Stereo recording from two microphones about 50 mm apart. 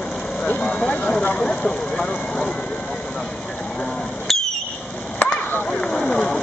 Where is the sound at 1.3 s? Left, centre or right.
Centre.